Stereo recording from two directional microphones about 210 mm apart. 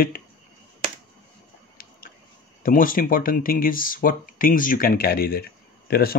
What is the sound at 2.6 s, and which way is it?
Speech, 40° left (ahead or behind).